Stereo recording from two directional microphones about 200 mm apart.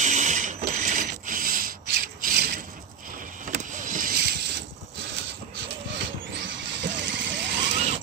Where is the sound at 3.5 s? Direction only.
40° right (ahead or behind).